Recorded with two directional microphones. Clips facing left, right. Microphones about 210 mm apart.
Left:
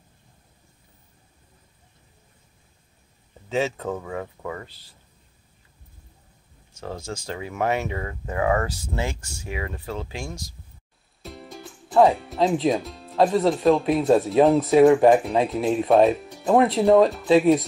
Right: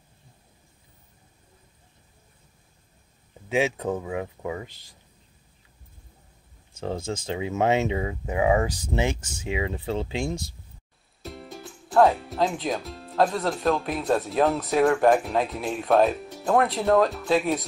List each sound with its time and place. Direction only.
3.4 s speech: 10° right (ahead or behind)
7.2 s speech: 20° right (ahead or behind)
11.2 s speech: centre (ahead or behind)